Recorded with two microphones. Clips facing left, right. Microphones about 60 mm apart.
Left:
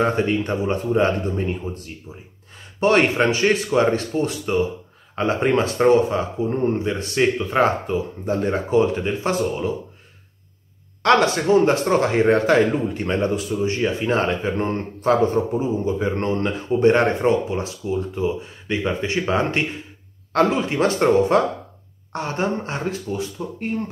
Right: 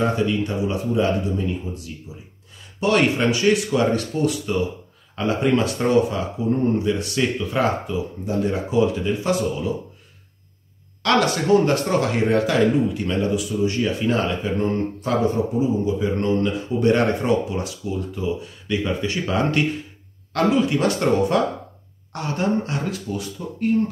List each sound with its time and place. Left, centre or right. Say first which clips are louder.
0.0 s speech: left 1 dB; left
11.0 s speech: left 3 dB; left